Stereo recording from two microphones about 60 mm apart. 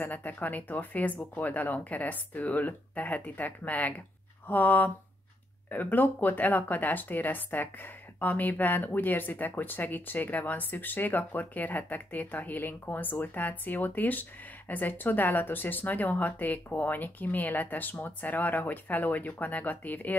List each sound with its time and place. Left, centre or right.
0.0 s speech: left